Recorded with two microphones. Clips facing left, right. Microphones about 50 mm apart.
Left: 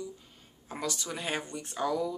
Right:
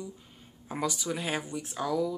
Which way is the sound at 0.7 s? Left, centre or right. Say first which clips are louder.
Right 4 dB; centre.